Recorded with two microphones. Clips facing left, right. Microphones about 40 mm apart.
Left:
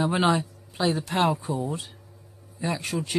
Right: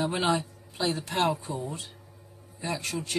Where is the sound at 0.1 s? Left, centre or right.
Centre.